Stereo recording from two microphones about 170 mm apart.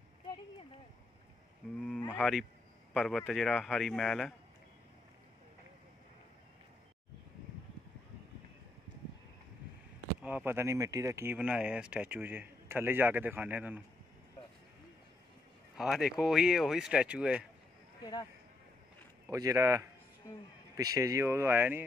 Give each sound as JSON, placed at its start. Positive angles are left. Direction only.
{"t": 2.0, "sound": "speech", "side_deg": 15}
{"t": 2.9, "sound": "speech", "side_deg": 0}
{"t": 10.2, "sound": "speech", "side_deg": -10}
{"t": 15.8, "sound": "speech", "side_deg": 0}
{"t": 19.2, "sound": "speech", "side_deg": -20}